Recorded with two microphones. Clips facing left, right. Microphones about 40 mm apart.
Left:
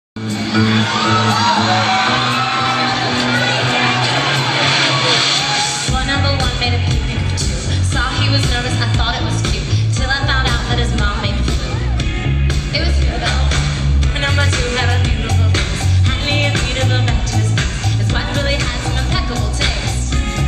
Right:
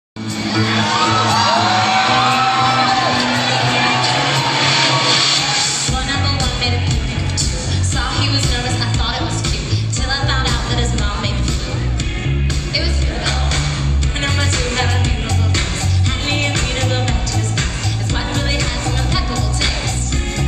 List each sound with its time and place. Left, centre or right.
0.5 s music: centre
2.3 s music: centre
2.6 s music: left
3.6 s vehicle: left
8.0 s music: left
10.0 s music: left
16.3 s music: centre